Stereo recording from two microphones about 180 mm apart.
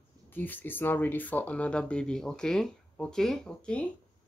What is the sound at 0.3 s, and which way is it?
Speech, 10° left (ahead or behind).